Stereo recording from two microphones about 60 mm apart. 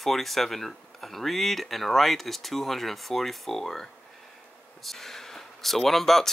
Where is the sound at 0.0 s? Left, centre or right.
Centre.